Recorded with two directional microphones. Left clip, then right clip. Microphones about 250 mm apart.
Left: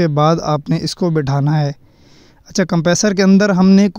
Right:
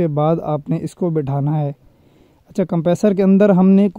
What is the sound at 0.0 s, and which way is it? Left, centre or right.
Speech, left.